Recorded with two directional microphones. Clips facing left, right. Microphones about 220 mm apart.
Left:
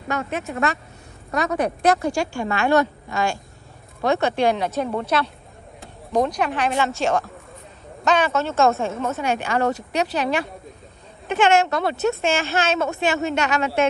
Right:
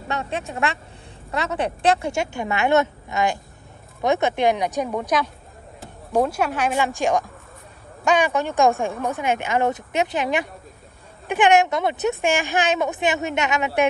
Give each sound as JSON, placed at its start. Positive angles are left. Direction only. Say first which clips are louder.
{"t": 0.1, "sound": "a woman's voice", "louder": "left 2 dB", "side_deg": -30}